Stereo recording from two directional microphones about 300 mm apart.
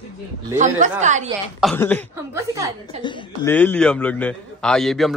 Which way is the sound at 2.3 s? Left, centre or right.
Centre.